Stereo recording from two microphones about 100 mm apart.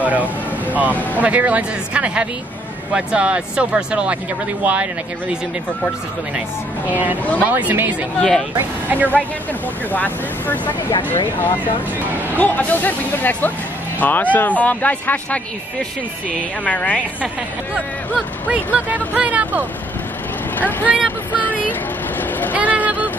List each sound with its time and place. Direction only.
0.0 s speech: 15° right (ahead or behind)
6.9 s speech: 15° right (ahead or behind)
8.2 s speech: 5° left (ahead or behind)
8.5 s speech: 20° right (ahead or behind)
9.9 s speech: 15° left (ahead or behind)
12.4 s speech: 15° left (ahead or behind)
16.6 s speech: 15° left (ahead or behind)
17.7 s speech: 10° right (ahead or behind)
20.5 s speech: 15° left (ahead or behind)
21.3 s a sound: 15° left (ahead or behind)
22.5 s vehicle: 15° right (ahead or behind)